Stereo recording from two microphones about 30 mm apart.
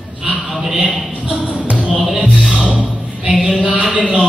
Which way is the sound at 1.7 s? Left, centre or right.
Right.